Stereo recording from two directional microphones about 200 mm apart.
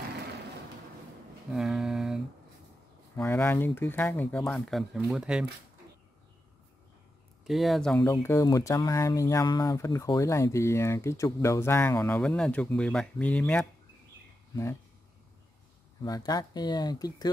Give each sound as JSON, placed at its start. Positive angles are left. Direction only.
{"t": 1.5, "sound": "a sound", "side_deg": 0}
{"t": 3.2, "sound": "speech", "side_deg": 10}
{"t": 7.4, "sound": "speech", "side_deg": 0}
{"t": 8.0, "sound": "speech", "side_deg": 15}
{"t": 16.0, "sound": "speech", "side_deg": 20}